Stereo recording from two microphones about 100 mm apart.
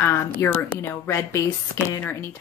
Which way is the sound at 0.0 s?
25° left (ahead or behind).